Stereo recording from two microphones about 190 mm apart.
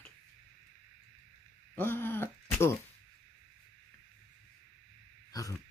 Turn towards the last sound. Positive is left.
turn(degrees=20)  # may be behind; listen again after turning